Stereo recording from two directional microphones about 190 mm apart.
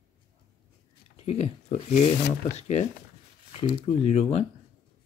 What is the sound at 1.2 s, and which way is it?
Speech, 35° left (ahead or behind).